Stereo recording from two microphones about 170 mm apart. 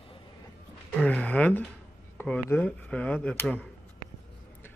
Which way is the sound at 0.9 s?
10° left (ahead or behind).